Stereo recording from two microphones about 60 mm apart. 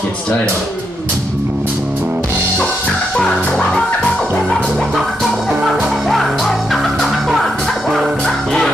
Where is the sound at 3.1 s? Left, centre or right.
Centre.